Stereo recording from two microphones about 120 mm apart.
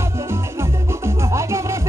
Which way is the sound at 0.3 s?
20° right (ahead or behind).